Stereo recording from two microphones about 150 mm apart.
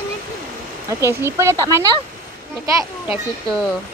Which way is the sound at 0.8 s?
20° right (ahead or behind).